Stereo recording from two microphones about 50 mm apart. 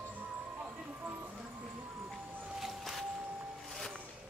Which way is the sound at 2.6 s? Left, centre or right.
Centre.